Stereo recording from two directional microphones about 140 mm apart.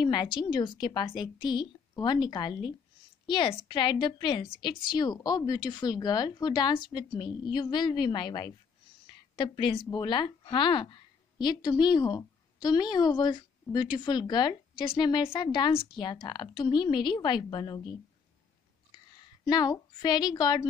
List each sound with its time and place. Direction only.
0.0 s a woman's voice: 30° left (ahead or behind)
19.4 s a woman's voice: 30° left (ahead or behind)